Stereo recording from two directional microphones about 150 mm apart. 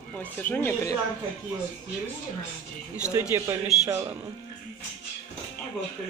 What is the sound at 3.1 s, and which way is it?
Speech, 20° right (ahead or behind).